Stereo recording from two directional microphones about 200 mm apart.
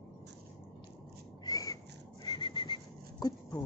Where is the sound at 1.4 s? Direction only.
15° left (ahead or behind).